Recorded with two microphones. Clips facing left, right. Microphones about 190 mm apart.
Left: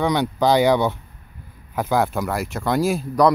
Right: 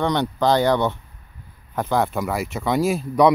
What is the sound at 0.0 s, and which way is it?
Speech, 5° left (ahead or behind).